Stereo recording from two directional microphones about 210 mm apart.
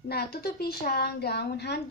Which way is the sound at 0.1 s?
50° left (ahead or behind).